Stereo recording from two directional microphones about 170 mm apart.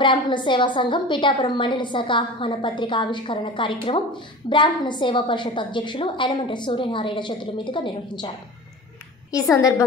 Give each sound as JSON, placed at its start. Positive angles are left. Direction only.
{"t": 0.0, "sound": "a woman's voice", "side_deg": 25}
{"t": 9.3, "sound": "a woman's voice", "side_deg": 20}